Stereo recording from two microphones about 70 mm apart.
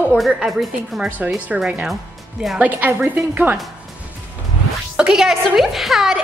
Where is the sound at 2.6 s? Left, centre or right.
Right.